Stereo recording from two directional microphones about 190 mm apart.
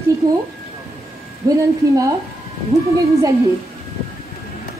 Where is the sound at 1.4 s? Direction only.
20° right (ahead or behind).